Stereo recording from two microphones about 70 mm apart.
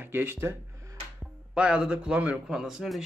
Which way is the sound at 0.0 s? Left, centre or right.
Right.